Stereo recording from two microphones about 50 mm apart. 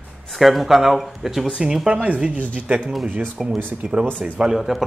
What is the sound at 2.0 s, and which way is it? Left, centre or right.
Speech, right.